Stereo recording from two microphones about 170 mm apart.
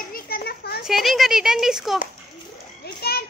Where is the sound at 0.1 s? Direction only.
65° left (ahead or behind).